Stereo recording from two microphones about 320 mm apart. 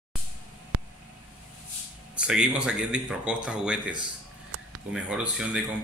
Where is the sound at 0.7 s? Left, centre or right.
Right.